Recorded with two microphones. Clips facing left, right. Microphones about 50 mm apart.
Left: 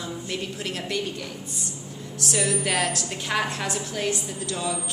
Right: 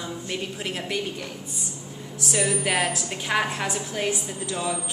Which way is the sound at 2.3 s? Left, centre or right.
Centre.